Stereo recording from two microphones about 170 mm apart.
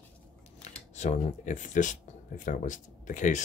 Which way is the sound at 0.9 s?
45° left (ahead or behind).